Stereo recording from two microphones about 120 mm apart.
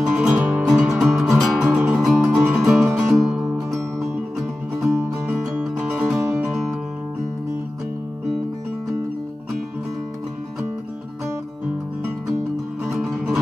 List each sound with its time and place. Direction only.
0.0 s music: 10° right (ahead or behind)
5.0 s music: 15° right (ahead or behind)
5.3 s music: centre (ahead or behind)
6.0 s music: 25° right (ahead or behind)
6.5 s music: centre (ahead or behind)
12.8 s music: centre (ahead or behind)